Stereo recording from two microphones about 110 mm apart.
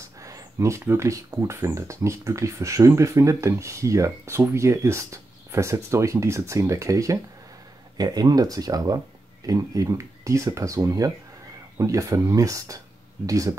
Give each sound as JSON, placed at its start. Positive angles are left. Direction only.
{"t": 0.2, "sound": "speech", "side_deg": -30}